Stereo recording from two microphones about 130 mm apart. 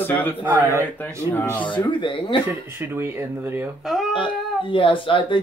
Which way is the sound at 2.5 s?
20° right (ahead or behind).